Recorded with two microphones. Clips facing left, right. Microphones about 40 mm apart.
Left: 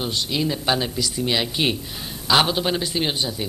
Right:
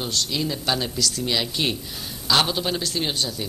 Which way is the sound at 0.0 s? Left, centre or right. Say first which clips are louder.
Left 2 dB; centre.